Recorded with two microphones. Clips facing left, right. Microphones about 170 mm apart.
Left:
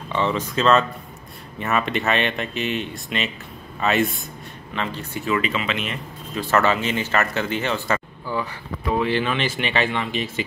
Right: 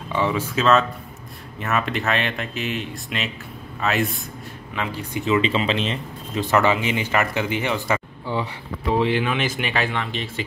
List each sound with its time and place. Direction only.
0.1 s speech: 10° right (ahead or behind); by 5.9 s 30° right (ahead or behind)
6.3 s speech: 15° right (ahead or behind)
8.3 s speech: 25° right (ahead or behind)
9.1 s speech: 10° right (ahead or behind)